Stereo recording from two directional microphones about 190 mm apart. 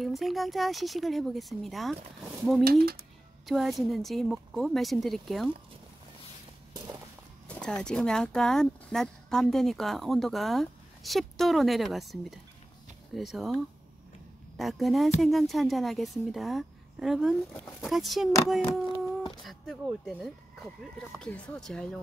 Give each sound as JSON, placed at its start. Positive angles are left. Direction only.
{"t": 0.0, "sound": "speech", "side_deg": 0}
{"t": 2.6, "sound": "speech", "side_deg": -55}
{"t": 3.4, "sound": "speech", "side_deg": 0}
{"t": 7.4, "sound": "speech", "side_deg": 5}
{"t": 14.6, "sound": "speech", "side_deg": 0}
{"t": 19.4, "sound": "speech", "side_deg": 0}